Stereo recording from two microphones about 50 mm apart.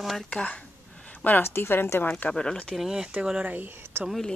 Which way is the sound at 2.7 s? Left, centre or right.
Centre.